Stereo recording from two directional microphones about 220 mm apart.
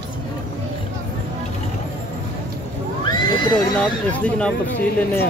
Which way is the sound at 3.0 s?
20° left (ahead or behind).